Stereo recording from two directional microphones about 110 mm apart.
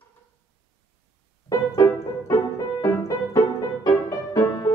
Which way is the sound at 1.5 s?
35° left (ahead or behind).